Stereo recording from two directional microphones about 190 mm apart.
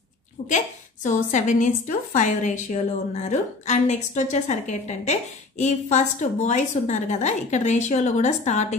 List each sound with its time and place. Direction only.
0.5 s a woman's voice: 40° left (ahead or behind)